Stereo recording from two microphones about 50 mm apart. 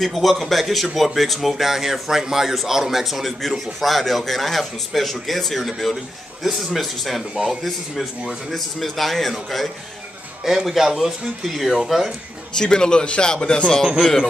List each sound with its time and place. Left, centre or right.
0.0 s speech: centre
10.4 s speech: centre
12.5 s speech: centre